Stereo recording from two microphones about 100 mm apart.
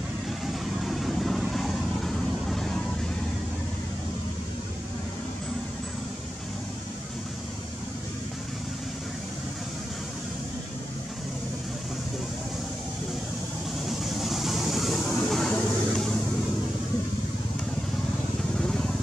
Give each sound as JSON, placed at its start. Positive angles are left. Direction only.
{"t": 0.5, "sound": "vehicle", "side_deg": 0}
{"t": 13.8, "sound": "vehicle", "side_deg": 0}
{"t": 18.6, "sound": "vehicle", "side_deg": 5}